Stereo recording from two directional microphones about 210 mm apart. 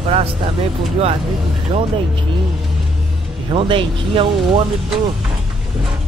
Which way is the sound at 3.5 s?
25° right (ahead or behind).